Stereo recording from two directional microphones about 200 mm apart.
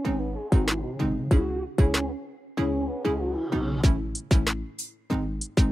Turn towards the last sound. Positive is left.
turn(degrees=0)  # may be behind; listen again after turning